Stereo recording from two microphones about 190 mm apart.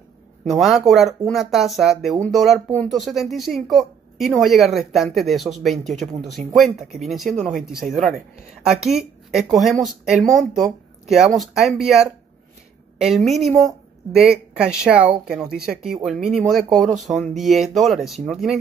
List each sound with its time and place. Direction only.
0.5 s speech: centre (ahead or behind)
14.5 s speech: 5° right (ahead or behind)